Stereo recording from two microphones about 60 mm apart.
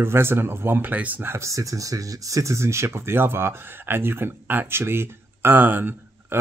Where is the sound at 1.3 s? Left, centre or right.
Right.